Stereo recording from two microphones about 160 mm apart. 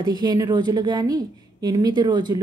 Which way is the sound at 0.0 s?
25° right (ahead or behind).